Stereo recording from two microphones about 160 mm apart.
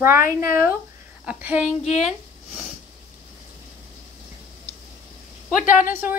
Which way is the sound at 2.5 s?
Centre (ahead or behind).